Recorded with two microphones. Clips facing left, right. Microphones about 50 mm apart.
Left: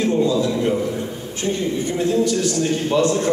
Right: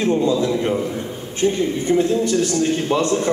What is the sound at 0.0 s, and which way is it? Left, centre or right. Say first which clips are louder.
Speech: even; right.